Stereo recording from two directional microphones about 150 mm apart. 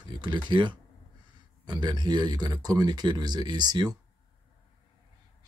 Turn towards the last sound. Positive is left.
turn(degrees=-30)  # may be behind; listen again after turning